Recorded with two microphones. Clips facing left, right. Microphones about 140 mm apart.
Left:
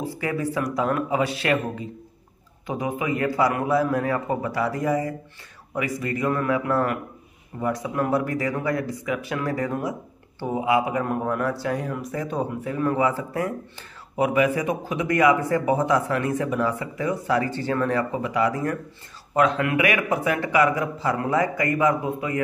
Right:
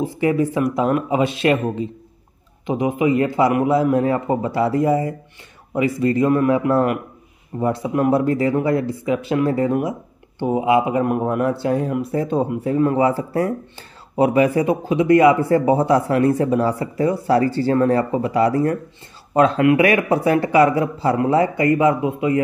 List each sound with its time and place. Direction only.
0.0 s a man's voice: 20° right (ahead or behind)